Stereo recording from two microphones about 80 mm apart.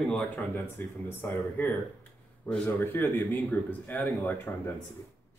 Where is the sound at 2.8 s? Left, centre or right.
Left.